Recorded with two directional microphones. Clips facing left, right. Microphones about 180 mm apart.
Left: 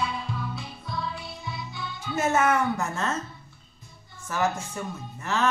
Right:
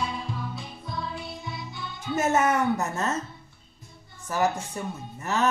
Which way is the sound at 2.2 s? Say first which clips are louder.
Even; 20° right (ahead or behind).